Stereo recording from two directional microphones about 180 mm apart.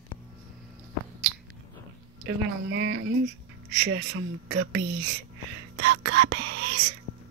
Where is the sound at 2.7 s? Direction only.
90° right.